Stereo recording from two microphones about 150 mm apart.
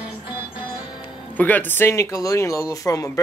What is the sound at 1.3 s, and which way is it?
Speech, 10° left (ahead or behind).